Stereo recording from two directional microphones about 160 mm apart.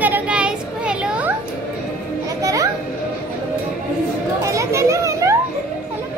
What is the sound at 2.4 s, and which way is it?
Children playing, 20° right (ahead or behind).